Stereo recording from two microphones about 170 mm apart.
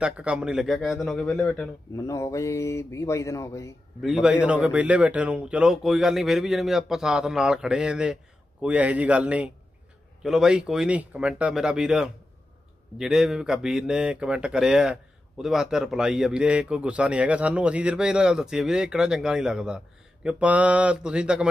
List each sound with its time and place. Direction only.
0.0 s speech: 5° right (ahead or behind)
2.0 s speech: 20° left (ahead or behind)
4.0 s speech: 5° right (ahead or behind)